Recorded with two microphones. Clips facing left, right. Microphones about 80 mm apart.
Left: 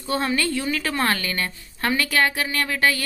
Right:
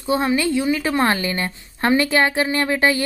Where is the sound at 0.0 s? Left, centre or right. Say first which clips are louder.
Right 4 dB; centre.